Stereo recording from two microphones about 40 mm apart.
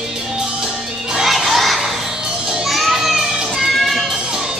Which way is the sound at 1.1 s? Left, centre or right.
Centre.